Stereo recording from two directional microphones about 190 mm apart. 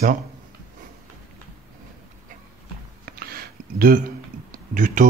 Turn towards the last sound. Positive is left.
turn(degrees=-45)  # may be behind; listen again after turning